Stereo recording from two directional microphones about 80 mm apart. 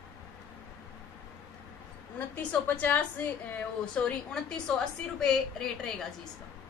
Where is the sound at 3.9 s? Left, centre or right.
Centre.